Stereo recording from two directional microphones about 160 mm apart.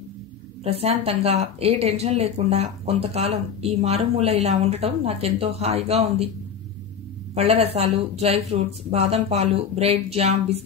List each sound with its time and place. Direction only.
0.7 s speech: 40° right (ahead or behind)
7.3 s speech: 40° right (ahead or behind)